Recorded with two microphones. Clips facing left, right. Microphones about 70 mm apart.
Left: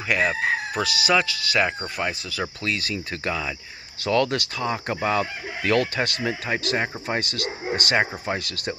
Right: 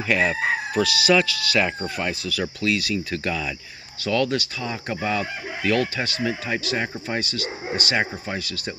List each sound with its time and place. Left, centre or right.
0.1 s chicken: centre
0.7 s speech: left
4.0 s speech: left